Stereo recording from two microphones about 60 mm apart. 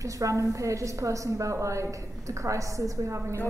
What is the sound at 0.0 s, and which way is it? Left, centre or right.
A woman's voice, right.